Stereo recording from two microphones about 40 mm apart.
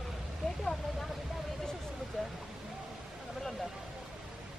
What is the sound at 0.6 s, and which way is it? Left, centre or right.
Speech, centre.